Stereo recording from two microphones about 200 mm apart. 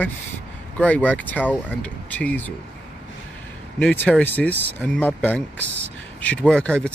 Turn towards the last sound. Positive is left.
turn(degrees=5)  # may be behind; listen again after turning